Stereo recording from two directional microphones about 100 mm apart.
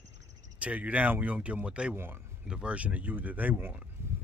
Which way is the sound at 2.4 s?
10° right (ahead or behind).